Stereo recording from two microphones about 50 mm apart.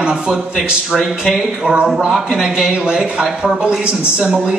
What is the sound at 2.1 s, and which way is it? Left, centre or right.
Speech, centre.